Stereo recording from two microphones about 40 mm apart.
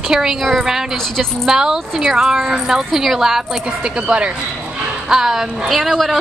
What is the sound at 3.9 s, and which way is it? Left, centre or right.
Speech, right.